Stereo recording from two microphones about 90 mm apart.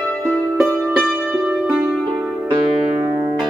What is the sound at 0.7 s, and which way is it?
Music, 20° right (ahead or behind).